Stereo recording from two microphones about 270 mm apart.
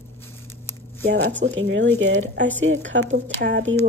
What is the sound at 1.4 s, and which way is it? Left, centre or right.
Speech, right.